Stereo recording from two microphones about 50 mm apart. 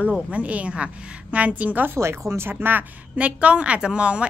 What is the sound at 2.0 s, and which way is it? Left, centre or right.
Speech, right.